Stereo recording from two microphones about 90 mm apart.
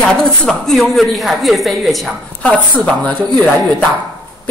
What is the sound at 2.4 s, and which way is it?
Speech, 15° left (ahead or behind).